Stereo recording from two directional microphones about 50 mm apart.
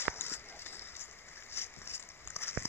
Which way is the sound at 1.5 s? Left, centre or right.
Left.